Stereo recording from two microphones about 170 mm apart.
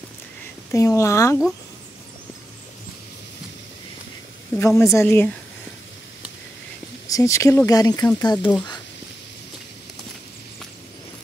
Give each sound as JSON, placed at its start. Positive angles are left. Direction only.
{"t": 0.7, "sound": "speech", "side_deg": 20}
{"t": 4.6, "sound": "speech", "side_deg": 15}
{"t": 7.1, "sound": "speech", "side_deg": 20}